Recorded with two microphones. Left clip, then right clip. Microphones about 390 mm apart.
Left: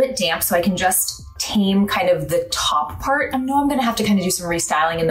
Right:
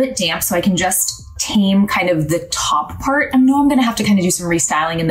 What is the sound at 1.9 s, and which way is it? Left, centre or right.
Speech, left.